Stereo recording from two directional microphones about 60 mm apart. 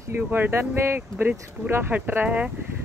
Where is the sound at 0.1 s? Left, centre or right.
Right.